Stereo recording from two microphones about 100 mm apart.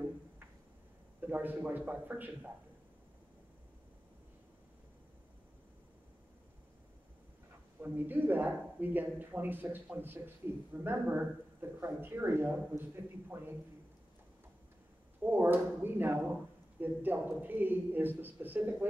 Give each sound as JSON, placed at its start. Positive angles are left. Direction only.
{"t": 1.2, "sound": "speech", "side_deg": -20}
{"t": 7.8, "sound": "speech", "side_deg": -20}
{"t": 15.2, "sound": "speech", "side_deg": -20}